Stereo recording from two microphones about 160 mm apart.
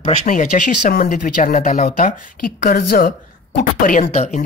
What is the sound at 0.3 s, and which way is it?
Speech, 55° left (ahead or behind).